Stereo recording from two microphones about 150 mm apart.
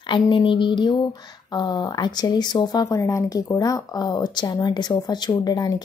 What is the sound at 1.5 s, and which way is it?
Speech, 30° left (ahead or behind).